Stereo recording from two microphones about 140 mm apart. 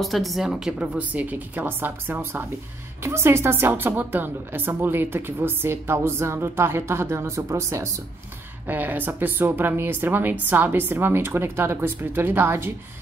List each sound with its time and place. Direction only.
0.0 s a woman's voice: centre (ahead or behind); by 12.7 s 15° right (ahead or behind)